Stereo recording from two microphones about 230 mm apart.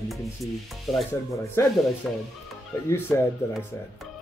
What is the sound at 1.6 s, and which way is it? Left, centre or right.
Speech, centre.